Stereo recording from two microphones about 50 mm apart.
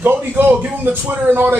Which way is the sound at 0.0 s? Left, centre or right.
Right.